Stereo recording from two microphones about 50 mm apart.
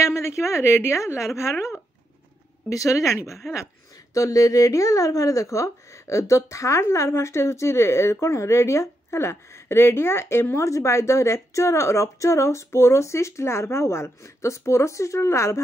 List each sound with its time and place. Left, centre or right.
0.0 s speech: left
2.8 s a woman's voice: left